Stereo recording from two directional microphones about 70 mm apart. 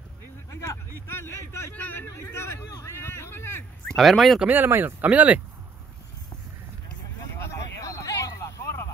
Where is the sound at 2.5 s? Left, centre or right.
Left.